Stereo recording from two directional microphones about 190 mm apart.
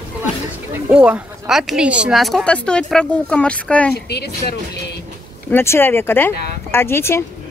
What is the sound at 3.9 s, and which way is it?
Speech, 60° left (ahead or behind).